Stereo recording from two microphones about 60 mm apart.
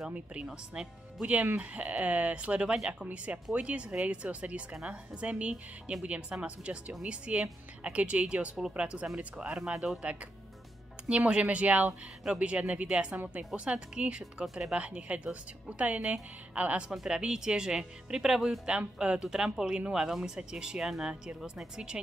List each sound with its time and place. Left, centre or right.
0.1 s speech: centre
0.5 s speech: centre
1.2 s speech: right
11.1 s speech: centre
13.1 s speech: right
14.4 s speech: centre
14.7 s speech: centre
16.9 s speech: centre
18.7 s speech: centre